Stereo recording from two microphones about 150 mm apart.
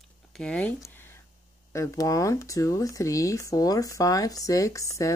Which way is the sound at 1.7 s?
20° left (ahead or behind).